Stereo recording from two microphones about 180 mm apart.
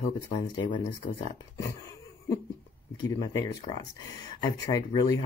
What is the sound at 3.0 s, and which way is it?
Speech, 20° left (ahead or behind).